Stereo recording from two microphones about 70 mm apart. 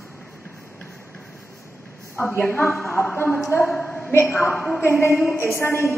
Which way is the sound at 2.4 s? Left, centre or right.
Left.